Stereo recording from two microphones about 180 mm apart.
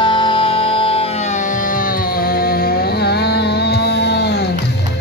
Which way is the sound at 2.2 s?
55° left (ahead or behind).